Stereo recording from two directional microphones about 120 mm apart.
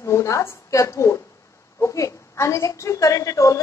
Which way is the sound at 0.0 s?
25° left (ahead or behind).